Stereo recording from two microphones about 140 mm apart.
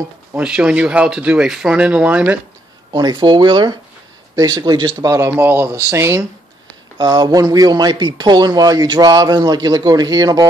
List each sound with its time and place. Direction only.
0.3 s speech: 10° right (ahead or behind)
2.9 s speech: 30° right (ahead or behind)
5.1 s speech: 20° right (ahead or behind)